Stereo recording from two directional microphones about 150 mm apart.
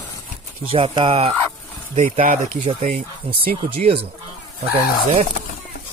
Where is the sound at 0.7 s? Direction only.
40° right (ahead or behind).